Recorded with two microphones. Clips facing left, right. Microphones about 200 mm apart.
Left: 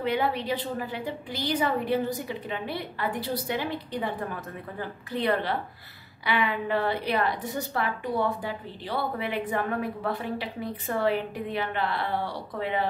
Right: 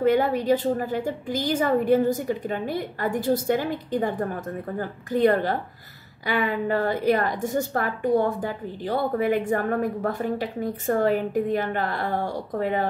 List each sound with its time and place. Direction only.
0.0 s a woman's voice: 45° right (ahead or behind)